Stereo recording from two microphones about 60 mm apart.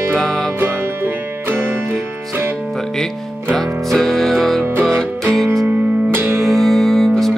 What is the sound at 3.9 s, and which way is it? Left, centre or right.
Music, centre.